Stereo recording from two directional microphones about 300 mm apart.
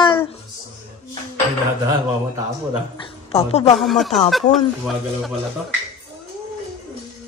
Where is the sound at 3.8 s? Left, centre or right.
Centre.